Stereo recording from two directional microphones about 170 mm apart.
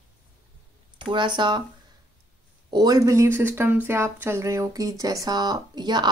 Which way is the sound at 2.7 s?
20° right (ahead or behind).